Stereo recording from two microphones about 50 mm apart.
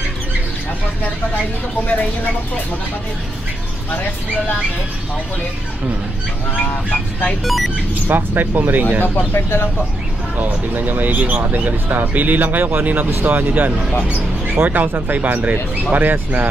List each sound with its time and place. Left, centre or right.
6.5 s speech: left
7.4 s speech: centre
8.1 s speech: right
9.0 s speech: left
9.3 s speech: left
10.3 s speech: right
14.0 s a sound: right
14.7 s speech: right
15.1 s speech: right